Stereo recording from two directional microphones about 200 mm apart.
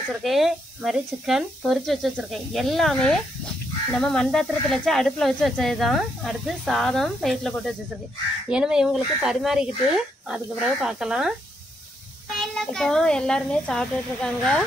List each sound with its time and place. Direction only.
0.2 s speech: centre (ahead or behind)
12.4 s speech: centre (ahead or behind)